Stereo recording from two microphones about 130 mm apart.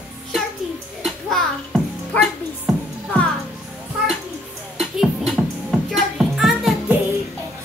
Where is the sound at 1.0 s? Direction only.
Centre (ahead or behind).